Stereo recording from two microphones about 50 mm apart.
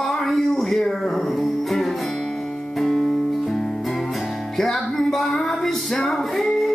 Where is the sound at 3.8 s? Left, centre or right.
Centre.